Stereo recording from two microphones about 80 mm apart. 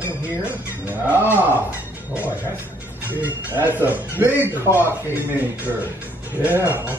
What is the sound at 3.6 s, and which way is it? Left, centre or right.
Speech, right.